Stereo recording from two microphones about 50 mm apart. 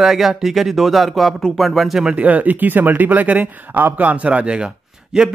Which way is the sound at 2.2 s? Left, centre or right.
Right.